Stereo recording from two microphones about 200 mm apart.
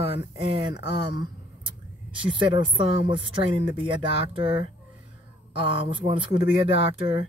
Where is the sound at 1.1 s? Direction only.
20° right (ahead or behind).